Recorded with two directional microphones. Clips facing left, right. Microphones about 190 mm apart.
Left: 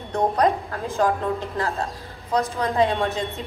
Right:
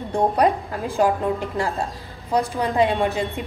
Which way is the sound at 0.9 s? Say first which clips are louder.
Right 2 dB; 15° right (ahead or behind).